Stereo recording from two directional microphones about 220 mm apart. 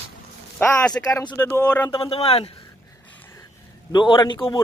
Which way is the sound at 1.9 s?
25° left (ahead or behind).